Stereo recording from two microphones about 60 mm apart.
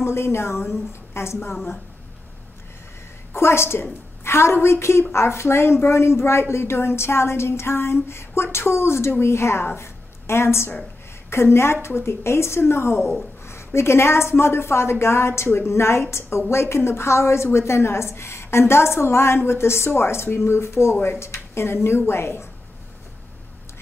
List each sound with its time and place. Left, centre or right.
0.0 s a woman's voice: left
3.3 s a woman's voice: left